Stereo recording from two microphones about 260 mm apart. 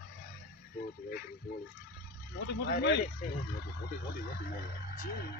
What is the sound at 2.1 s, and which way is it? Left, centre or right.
Speech, left.